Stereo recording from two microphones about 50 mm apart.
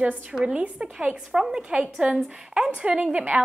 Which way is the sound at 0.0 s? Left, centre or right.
Right.